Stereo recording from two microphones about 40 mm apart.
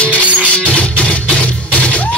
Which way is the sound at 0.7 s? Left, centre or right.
Left.